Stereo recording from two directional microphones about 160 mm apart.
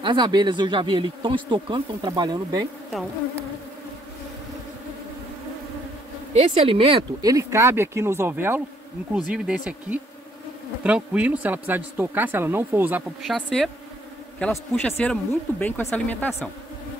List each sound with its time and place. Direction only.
0.0 s speech: 30° right (ahead or behind)
2.9 s bee: centre (ahead or behind)
6.3 s speech: 40° right (ahead or behind)
7.2 s speech: 20° right (ahead or behind)
13.2 s bee: centre (ahead or behind)
14.4 s speech: 5° left (ahead or behind)